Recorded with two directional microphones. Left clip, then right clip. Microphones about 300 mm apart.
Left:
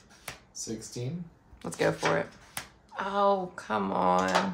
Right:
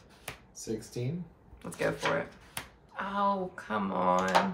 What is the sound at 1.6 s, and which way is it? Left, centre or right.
Speech, left.